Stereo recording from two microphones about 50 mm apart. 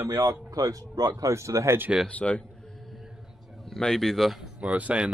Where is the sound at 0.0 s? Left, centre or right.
Right.